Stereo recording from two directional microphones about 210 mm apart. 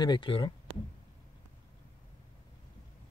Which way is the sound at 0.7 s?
25° right (ahead or behind).